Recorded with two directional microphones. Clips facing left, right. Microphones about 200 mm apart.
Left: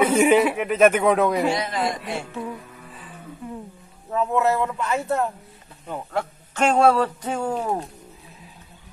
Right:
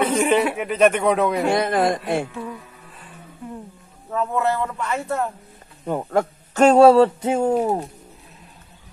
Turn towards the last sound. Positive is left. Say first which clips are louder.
# right 6 dB
turn(degrees=-20)  # may be behind; listen again after turning